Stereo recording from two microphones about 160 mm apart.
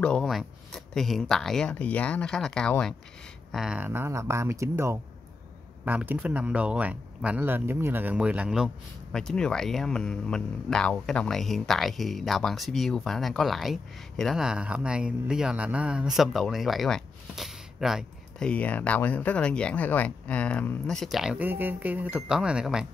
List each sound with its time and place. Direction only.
0.0 s speech: 5° left (ahead or behind)
3.5 s speech: 5° right (ahead or behind)
18.5 s speech: 10° left (ahead or behind)